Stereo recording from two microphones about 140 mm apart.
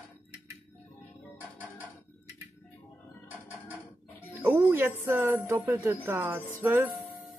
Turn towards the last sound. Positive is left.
turn(degrees=-15)  # may be behind; listen again after turning